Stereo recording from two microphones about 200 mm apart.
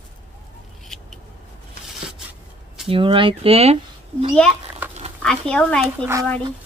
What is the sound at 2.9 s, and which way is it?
Speech, 25° right (ahead or behind).